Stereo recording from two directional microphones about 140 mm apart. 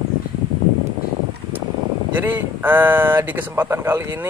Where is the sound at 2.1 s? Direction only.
15° right (ahead or behind).